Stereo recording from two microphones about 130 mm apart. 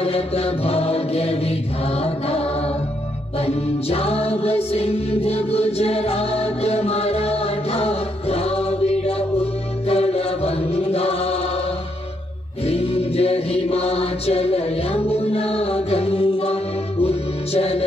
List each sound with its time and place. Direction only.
0.0 s mantra: 50° left (ahead or behind)
3.3 s music: 50° left (ahead or behind)
12.6 s music: 50° left (ahead or behind)